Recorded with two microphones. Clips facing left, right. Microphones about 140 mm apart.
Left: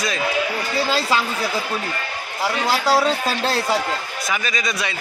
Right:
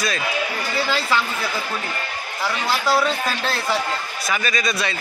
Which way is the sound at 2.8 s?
35° left (ahead or behind).